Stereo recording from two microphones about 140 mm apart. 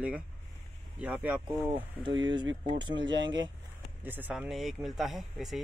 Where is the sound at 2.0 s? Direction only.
35° right (ahead or behind).